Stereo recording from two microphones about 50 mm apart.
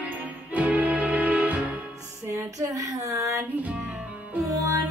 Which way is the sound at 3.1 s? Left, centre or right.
Right.